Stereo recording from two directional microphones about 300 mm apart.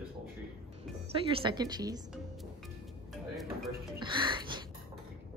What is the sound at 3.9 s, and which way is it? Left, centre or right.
Speech, centre.